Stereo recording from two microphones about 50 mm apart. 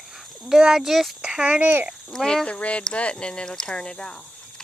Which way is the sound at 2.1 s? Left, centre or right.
Centre.